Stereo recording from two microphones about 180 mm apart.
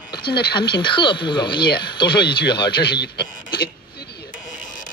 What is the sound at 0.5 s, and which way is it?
Speech, 25° left (ahead or behind).